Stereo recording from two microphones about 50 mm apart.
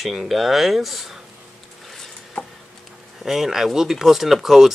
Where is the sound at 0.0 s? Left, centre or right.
Centre.